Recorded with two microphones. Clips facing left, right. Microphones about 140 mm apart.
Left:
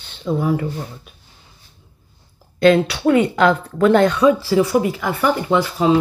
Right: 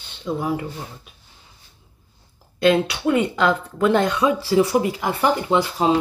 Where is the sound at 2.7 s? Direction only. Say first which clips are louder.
Left 3 dB; 10° right (ahead or behind).